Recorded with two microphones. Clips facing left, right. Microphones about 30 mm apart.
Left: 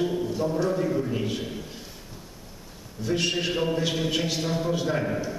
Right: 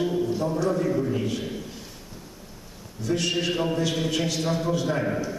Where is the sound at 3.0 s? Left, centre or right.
Centre.